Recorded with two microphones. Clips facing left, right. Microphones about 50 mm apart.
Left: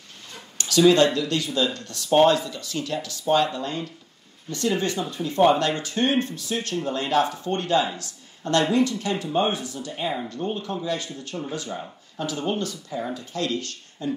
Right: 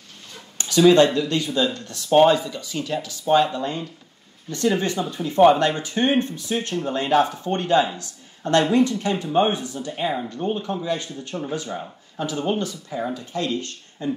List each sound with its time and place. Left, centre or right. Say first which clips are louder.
0.6 s speech: right 3 dB; right
9.9 s speech: right 2 dB; centre
11.7 s speech: right 2 dB; centre
12.4 s speech: right 2 dB; right